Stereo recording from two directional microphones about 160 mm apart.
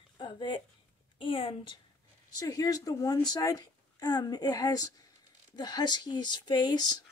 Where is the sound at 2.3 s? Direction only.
20° left (ahead or behind).